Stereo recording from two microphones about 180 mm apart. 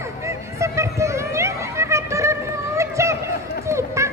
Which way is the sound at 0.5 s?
15° right (ahead or behind).